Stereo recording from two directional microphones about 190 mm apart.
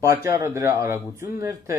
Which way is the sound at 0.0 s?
15° right (ahead or behind).